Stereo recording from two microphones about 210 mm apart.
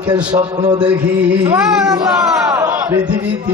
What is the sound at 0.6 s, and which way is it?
A man's voice, 10° right (ahead or behind).